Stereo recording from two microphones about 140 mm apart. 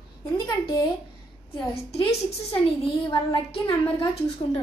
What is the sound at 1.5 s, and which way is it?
Speech, 45° left (ahead or behind).